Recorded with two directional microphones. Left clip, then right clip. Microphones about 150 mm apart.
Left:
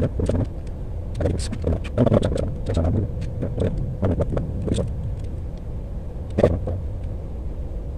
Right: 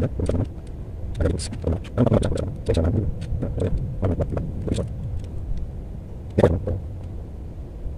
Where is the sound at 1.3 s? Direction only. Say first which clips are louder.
Left 1 dB; 25° right (ahead or behind).